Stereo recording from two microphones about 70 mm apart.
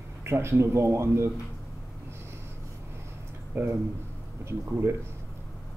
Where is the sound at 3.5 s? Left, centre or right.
Right.